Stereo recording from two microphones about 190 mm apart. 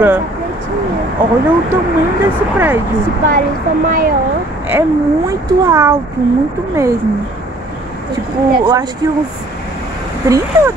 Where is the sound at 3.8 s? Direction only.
45° right (ahead or behind).